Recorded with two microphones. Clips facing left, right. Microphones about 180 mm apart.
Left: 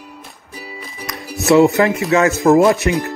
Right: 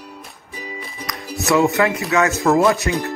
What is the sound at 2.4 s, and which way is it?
Speech, 25° left (ahead or behind).